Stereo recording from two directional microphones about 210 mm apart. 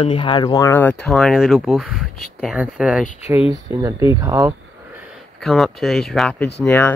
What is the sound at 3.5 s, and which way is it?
Speech, 15° right (ahead or behind).